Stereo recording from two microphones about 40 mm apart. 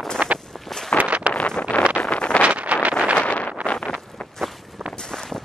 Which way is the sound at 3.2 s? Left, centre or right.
Left.